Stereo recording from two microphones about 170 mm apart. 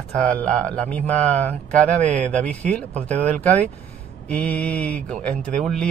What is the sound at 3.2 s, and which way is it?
Speech, 10° left (ahead or behind).